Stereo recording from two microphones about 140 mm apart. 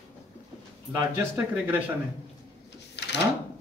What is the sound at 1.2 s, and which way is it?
Speech, 15° right (ahead or behind).